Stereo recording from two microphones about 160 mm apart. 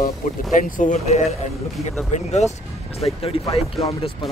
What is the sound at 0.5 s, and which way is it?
Speech, 55° left (ahead or behind).